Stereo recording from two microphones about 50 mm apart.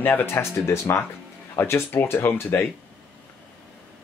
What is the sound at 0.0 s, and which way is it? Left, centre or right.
Speech, left.